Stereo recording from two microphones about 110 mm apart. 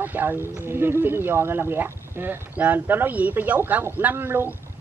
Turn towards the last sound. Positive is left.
turn(degrees=-20)  # may be behind; listen again after turning